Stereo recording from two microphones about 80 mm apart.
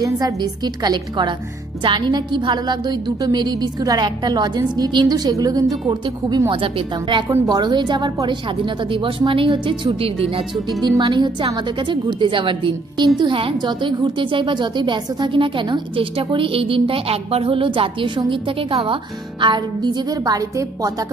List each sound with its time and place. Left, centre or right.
0.0 s a woman's voice: right
5.9 s a woman's voice: right
6.5 s a woman's voice: right
7.2 s a woman's voice: right
11.0 s a woman's voice: right
19.4 s a woman's voice: right